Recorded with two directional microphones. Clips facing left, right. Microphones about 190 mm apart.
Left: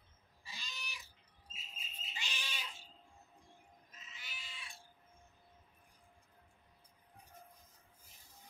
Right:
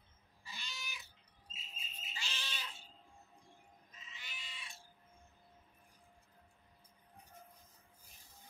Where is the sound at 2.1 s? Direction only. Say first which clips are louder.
Even; 15° left (ahead or behind).